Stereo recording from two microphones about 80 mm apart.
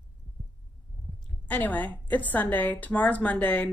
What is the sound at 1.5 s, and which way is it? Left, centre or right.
A woman's voice, left.